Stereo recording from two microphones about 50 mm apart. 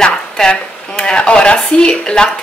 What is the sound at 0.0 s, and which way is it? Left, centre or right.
Speech, centre.